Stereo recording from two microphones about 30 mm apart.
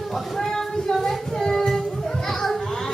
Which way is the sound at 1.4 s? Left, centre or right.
Centre.